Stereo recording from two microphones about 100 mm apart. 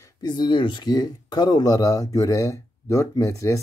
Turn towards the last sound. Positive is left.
turn(degrees=30)  # may be behind; listen again after turning